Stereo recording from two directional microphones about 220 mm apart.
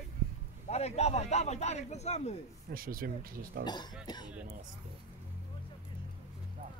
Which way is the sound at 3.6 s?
20° left (ahead or behind).